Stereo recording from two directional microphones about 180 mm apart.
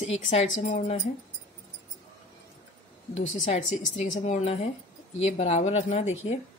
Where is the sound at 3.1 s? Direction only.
40° left (ahead or behind).